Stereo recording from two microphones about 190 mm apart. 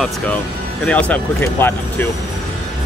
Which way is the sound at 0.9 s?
5° left (ahead or behind).